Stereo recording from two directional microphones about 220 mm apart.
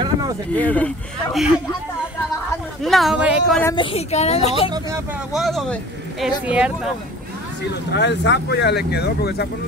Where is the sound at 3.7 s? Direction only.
30° left (ahead or behind).